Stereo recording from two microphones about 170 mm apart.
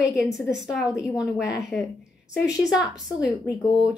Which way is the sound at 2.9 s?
Centre (ahead or behind).